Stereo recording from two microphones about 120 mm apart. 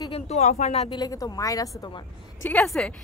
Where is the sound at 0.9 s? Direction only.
30° left (ahead or behind).